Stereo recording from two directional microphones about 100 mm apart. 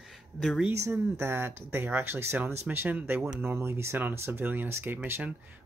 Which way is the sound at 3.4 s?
25° right (ahead or behind).